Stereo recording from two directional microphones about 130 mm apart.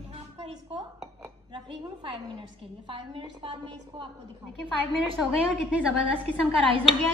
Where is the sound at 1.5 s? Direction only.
40° right (ahead or behind).